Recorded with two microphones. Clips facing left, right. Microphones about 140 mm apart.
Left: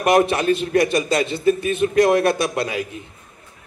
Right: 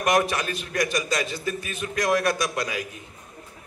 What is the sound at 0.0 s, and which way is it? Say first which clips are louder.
A man's voice: left 6 dB; 25° left (ahead or behind).